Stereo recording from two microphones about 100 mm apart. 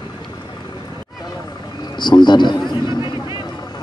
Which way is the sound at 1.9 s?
50° left (ahead or behind).